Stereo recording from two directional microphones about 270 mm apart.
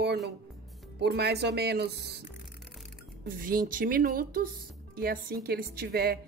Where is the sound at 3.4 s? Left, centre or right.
Right.